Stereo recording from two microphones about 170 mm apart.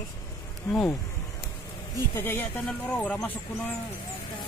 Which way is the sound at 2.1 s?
10° left (ahead or behind).